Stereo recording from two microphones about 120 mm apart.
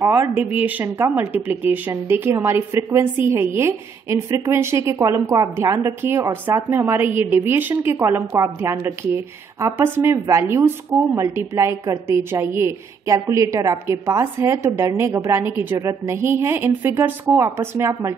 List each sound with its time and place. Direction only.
0.0 s a woman's voice: 15° right (ahead or behind)
0.8 s a woman's voice: 25° right (ahead or behind)